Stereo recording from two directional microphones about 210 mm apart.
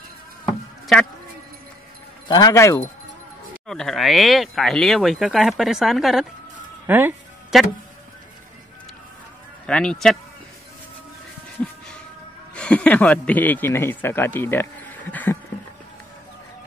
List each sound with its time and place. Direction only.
2.2 s speech: 20° left (ahead or behind)
3.6 s speech: centre (ahead or behind)
6.9 s music: 10° right (ahead or behind)
9.7 s speech: 5° left (ahead or behind)
12.5 s speech: 5° left (ahead or behind)